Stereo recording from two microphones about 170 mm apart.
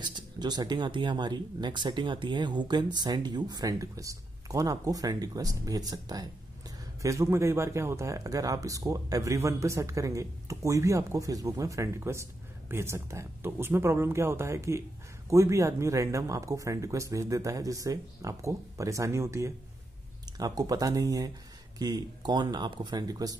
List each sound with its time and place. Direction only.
0.0 s speech: 25° right (ahead or behind)